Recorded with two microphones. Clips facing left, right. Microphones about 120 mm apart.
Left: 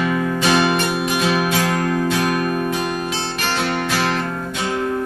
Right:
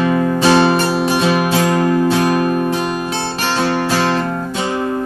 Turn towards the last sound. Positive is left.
turn(degrees=-30)  # may be behind; listen again after turning